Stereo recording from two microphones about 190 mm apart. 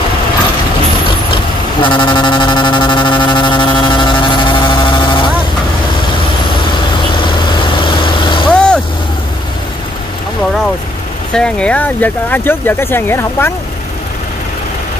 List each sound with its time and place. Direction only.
1.0 s vehicle: 25° left (ahead or behind)
6.5 s vehicle: 25° left (ahead or behind)
8.5 s vehicle: centre (ahead or behind)
11.3 s speech: 5° left (ahead or behind)